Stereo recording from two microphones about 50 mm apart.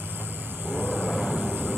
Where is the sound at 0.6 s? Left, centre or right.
Right.